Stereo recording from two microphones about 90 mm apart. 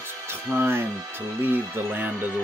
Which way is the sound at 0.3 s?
30° right (ahead or behind).